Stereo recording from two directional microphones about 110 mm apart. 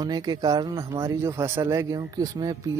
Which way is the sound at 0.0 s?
40° right (ahead or behind).